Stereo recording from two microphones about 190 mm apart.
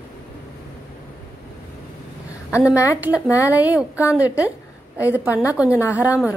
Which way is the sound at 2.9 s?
5° right (ahead or behind).